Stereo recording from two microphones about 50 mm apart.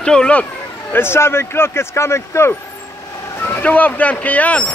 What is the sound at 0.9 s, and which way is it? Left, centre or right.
A man's voice, left.